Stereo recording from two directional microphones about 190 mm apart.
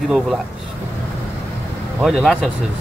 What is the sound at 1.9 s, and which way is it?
Speech, centre (ahead or behind).